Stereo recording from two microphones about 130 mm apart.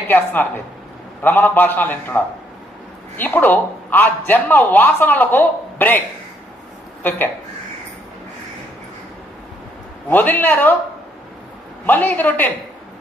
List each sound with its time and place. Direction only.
0.1 s a man's voice: 15° left (ahead or behind)
10.0 s a man's voice: 15° left (ahead or behind)
11.8 s a man's voice: 15° left (ahead or behind)